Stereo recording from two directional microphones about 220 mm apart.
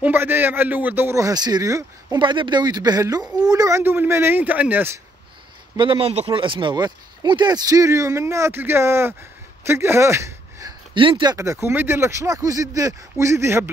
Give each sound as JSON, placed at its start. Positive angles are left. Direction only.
{"t": 0.0, "sound": "speech", "side_deg": -10}
{"t": 5.8, "sound": "speech", "side_deg": -25}